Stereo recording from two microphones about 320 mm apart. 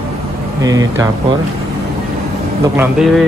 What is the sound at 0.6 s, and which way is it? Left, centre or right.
Speech, centre.